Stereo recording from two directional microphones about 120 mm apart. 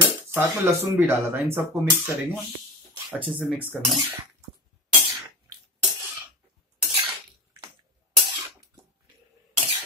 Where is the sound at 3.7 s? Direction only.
Centre (ahead or behind).